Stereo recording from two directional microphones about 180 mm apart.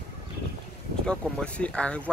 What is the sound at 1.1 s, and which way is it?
Speech, 5° left (ahead or behind).